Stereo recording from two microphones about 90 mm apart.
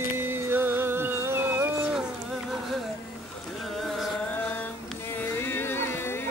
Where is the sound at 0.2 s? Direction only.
25° right (ahead or behind).